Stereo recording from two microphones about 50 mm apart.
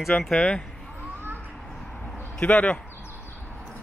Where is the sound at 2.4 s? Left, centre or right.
Left.